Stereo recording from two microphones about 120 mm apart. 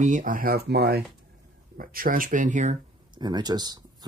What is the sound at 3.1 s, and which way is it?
Speech, 35° right (ahead or behind).